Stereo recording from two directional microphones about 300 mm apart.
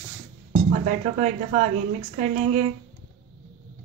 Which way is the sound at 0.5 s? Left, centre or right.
Right.